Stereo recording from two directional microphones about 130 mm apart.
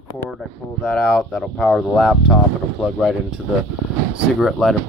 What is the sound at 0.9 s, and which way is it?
Speech, 5° left (ahead or behind).